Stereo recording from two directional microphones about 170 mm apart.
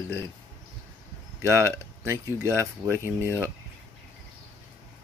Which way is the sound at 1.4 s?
15° right (ahead or behind).